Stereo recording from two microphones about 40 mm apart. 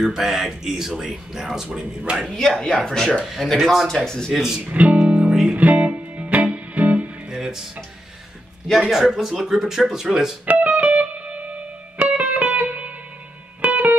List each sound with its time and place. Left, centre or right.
0.0 s speech: centre
2.3 s speech: centre
4.3 s speech: centre
4.6 s speech: right
5.0 s music: right
5.6 s speech: right
5.9 s music: right
7.2 s music: centre
8.7 s speech: centre
10.4 s music: right